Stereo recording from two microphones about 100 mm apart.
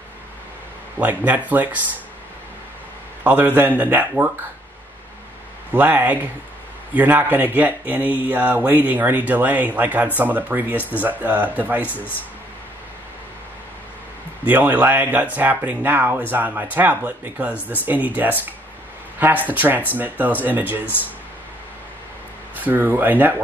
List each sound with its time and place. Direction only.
0.9 s speech: 15° right (ahead or behind)
3.3 s speech: 15° right (ahead or behind)
5.7 s speech: 15° right (ahead or behind)
14.4 s speech: 15° right (ahead or behind)
22.6 s speech: 15° right (ahead or behind)